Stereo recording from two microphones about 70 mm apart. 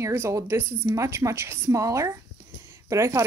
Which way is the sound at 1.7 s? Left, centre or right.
Right.